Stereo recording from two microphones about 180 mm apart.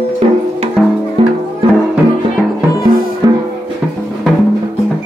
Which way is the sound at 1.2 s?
30° right (ahead or behind).